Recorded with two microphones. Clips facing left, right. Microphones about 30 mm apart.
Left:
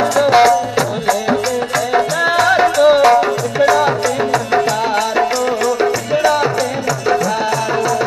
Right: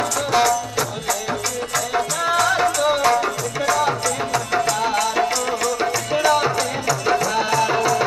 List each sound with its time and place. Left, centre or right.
0.3 s music: left; by 8.0 s centre